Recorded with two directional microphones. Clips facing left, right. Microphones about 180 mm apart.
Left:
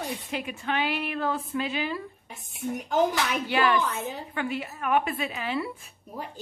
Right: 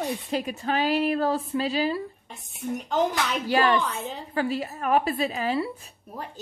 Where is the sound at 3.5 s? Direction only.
40° right (ahead or behind).